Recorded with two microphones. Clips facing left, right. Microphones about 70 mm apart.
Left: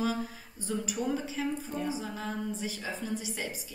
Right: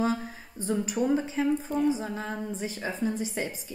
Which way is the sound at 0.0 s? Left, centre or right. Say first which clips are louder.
Right 4 dB; right.